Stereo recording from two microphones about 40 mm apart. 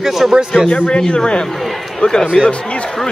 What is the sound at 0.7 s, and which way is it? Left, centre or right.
Speech, left.